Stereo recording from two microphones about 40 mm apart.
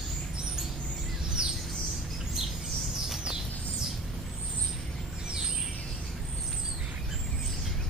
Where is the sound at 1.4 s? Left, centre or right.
Centre.